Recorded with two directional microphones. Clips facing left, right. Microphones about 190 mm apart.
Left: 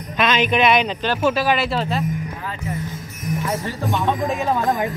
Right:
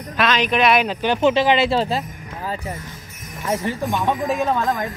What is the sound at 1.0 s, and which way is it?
Speech, 20° right (ahead or behind).